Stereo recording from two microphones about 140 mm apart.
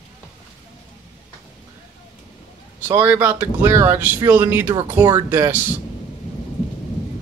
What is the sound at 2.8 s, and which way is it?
Speech, 15° right (ahead or behind).